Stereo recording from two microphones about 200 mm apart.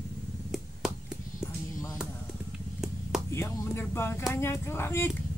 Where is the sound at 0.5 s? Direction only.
Centre (ahead or behind).